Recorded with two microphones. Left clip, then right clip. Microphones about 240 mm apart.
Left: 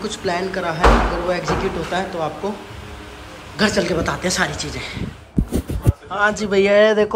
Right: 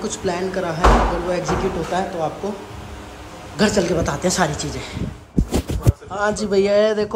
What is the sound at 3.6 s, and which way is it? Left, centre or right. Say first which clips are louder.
Speech: even; centre.